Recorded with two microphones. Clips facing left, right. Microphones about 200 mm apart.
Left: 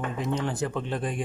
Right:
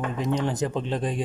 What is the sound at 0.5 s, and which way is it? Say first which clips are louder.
Speech: right 3 dB; 20° right (ahead or behind).